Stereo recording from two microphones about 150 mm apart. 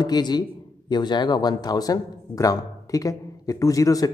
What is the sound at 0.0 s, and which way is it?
A man's voice, 30° left (ahead or behind).